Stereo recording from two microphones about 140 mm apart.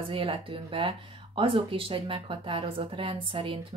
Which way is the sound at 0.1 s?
40° right (ahead or behind).